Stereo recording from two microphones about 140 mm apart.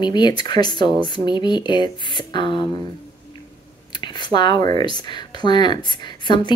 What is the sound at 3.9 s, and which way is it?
Speech, 30° left (ahead or behind).